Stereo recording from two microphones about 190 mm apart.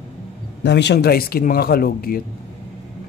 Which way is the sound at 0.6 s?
65° left (ahead or behind).